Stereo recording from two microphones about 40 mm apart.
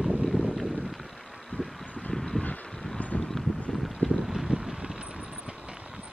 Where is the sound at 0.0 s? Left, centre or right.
Centre.